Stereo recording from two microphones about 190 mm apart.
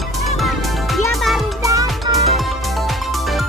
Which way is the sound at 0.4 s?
Centre (ahead or behind).